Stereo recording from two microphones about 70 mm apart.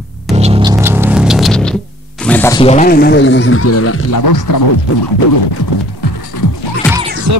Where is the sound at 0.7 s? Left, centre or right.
Right.